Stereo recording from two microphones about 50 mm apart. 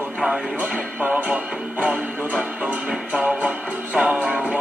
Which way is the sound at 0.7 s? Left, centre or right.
Right.